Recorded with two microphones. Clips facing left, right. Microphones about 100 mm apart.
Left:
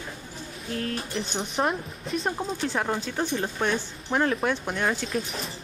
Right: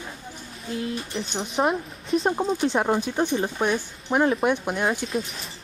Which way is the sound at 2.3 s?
20° right (ahead or behind).